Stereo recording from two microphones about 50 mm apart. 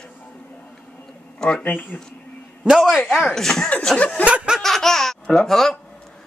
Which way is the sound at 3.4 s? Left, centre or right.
Centre.